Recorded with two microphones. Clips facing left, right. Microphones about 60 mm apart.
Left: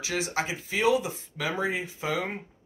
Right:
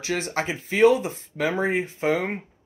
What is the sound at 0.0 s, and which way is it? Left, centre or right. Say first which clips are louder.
Speech: right 3 dB; right.